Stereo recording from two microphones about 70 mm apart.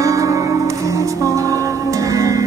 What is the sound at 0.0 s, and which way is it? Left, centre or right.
Music, right.